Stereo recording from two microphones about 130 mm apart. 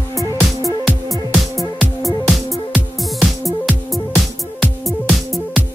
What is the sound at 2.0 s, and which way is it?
Music, 25° left (ahead or behind).